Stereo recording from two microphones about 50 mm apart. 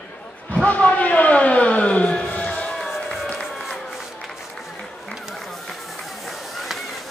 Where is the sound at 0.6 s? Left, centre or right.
Left.